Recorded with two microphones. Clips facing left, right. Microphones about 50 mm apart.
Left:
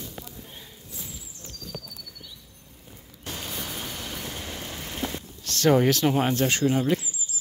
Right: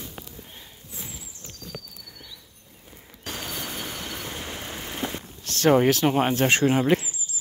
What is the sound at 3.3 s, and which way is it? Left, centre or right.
Music, right.